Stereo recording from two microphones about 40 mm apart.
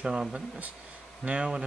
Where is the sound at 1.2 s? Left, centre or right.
Right.